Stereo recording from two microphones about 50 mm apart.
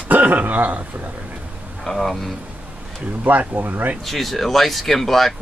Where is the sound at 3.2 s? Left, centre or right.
Right.